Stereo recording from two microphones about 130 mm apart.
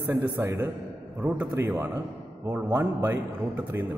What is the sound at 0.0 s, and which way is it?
A man's voice, 15° right (ahead or behind).